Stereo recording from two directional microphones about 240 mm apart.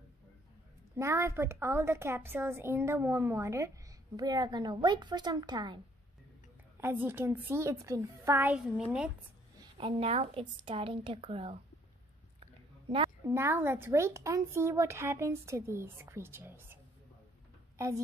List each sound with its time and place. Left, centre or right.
0.9 s a woman's voice: centre
6.8 s a woman's voice: centre
9.6 s a woman's voice: right
17.7 s a woman's voice: centre